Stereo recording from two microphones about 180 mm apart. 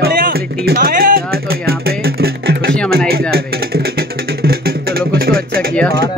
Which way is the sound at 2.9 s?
55° right (ahead or behind).